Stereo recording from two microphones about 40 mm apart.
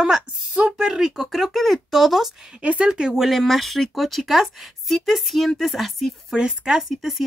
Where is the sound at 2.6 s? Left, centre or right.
Right.